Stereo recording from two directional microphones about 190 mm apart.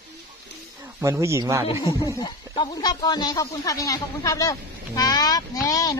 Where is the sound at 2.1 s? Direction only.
25° left (ahead or behind).